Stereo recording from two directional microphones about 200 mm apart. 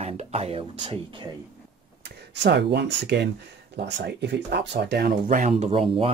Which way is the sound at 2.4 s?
60° right (ahead or behind).